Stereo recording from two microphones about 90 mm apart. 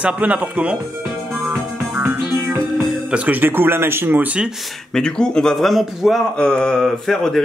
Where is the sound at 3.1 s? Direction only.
20° right (ahead or behind).